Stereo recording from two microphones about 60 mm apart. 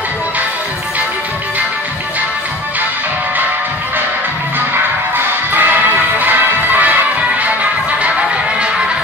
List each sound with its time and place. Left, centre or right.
5.1 s music: right